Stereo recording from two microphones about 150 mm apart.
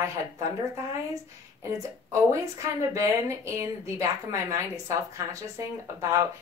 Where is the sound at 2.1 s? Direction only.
20° right (ahead or behind).